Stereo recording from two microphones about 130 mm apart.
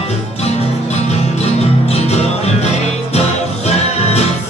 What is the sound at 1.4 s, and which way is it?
Music, 55° left (ahead or behind).